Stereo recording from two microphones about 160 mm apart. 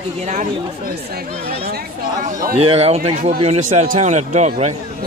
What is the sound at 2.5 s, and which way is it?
A man's voice, 40° right (ahead or behind).